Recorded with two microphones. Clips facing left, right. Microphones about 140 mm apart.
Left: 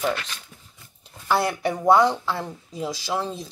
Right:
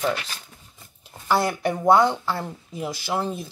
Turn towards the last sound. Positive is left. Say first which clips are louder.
# right 1 dB
turn(degrees=-5)  # may be behind; listen again after turning